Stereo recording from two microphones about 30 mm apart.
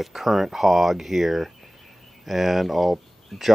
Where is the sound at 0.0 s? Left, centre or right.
Centre.